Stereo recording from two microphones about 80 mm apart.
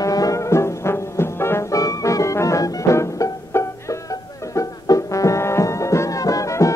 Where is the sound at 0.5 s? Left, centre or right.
Left.